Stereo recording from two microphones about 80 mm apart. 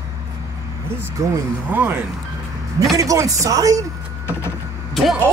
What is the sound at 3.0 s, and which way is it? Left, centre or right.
Speech, right.